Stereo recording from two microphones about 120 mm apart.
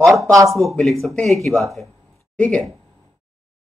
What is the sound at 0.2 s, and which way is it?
Speech, 25° right (ahead or behind).